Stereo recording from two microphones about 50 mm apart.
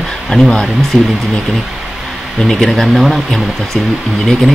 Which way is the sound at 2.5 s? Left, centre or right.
Centre.